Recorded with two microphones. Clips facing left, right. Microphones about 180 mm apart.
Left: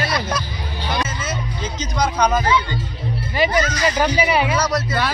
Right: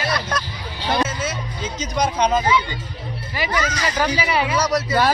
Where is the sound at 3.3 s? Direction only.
25° left (ahead or behind).